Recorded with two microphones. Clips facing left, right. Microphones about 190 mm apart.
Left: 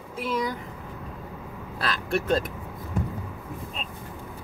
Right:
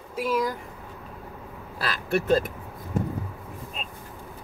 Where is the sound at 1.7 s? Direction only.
5° right (ahead or behind).